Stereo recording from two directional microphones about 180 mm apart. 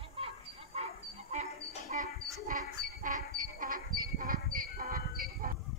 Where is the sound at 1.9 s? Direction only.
45° right (ahead or behind).